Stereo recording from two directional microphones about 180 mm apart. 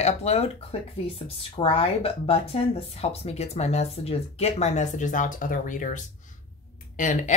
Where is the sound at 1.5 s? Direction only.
30° left (ahead or behind).